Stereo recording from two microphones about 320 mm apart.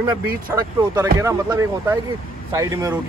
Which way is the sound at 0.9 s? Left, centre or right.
Centre.